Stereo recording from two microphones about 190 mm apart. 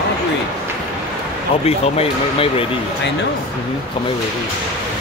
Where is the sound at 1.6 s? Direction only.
30° left (ahead or behind).